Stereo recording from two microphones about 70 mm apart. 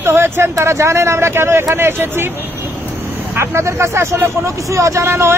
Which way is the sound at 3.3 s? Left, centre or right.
Right.